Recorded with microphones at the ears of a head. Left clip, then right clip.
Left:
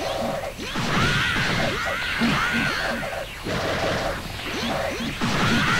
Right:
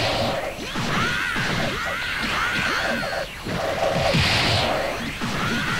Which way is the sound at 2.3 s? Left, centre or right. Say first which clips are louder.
Right 2 dB; centre.